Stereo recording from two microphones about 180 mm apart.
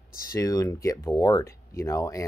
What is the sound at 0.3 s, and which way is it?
Speech, 20° left (ahead or behind).